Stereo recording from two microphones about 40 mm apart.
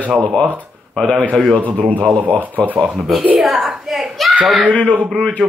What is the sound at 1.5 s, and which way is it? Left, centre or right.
Speech, right.